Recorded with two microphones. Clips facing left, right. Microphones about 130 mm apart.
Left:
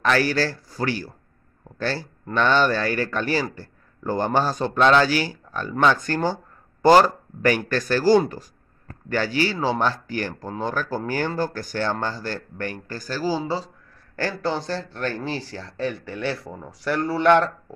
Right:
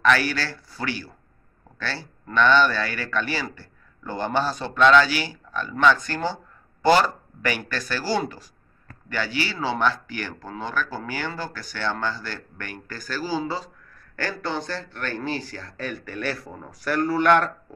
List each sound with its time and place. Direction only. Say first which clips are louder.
0.0 s speech: left 1 dB; 40° left (ahead or behind)